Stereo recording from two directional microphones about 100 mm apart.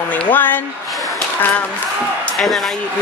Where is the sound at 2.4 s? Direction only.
Centre (ahead or behind).